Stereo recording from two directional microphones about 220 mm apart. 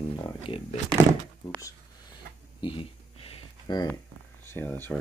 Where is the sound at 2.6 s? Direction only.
25° left (ahead or behind).